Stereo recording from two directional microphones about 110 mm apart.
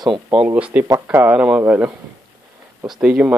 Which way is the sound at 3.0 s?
10° right (ahead or behind).